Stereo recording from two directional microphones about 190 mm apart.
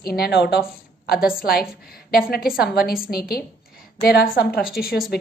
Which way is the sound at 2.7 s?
50° left (ahead or behind).